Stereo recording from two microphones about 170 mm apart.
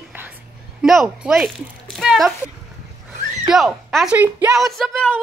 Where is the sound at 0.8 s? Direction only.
Centre (ahead or behind).